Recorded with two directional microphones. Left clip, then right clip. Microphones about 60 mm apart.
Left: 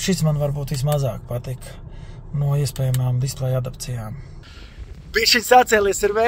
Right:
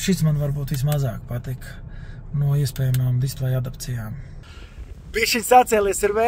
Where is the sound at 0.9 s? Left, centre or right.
Left.